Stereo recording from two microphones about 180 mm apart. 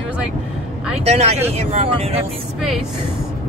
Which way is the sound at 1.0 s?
35° right (ahead or behind).